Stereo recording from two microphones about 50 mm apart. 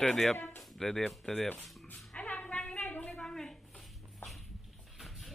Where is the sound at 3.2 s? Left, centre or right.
Centre.